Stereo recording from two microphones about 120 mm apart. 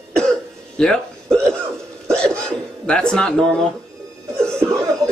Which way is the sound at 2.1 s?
5° left (ahead or behind).